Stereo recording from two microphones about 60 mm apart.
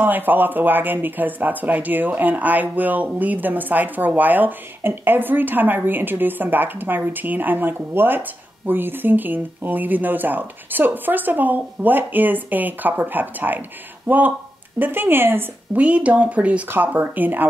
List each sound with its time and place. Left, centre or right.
0.0 s a woman's voice: right
15.8 s a woman's voice: right